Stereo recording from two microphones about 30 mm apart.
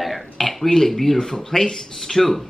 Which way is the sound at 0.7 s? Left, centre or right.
Centre.